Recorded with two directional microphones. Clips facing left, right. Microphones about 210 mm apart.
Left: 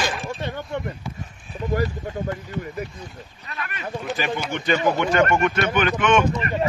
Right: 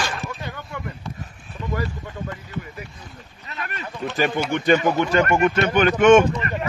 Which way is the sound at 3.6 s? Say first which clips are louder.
Right 1 dB; 40° right (ahead or behind).